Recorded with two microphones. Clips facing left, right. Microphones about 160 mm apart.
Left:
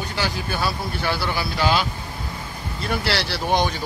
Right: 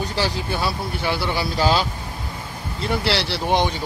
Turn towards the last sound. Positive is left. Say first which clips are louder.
# right 1 dB
turn(degrees=-25)  # may be behind; listen again after turning